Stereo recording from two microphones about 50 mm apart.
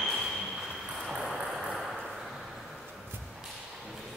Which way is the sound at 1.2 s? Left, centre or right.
Centre.